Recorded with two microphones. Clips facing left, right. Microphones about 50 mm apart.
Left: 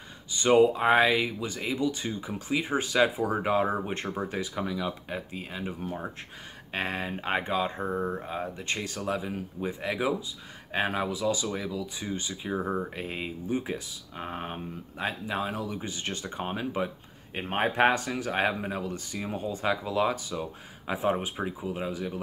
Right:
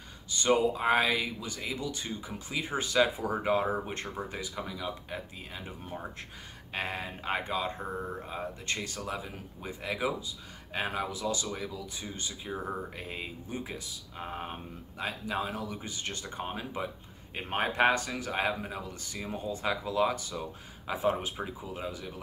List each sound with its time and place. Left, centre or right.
0.4 s speech: left
12.0 s speech: left
12.5 s speech: left
12.9 s speech: left
16.5 s speech: left
17.4 s speech: left
19.2 s speech: left